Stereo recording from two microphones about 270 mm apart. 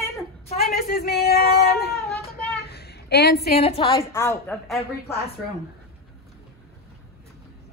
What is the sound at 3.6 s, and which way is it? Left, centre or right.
A woman's voice, left.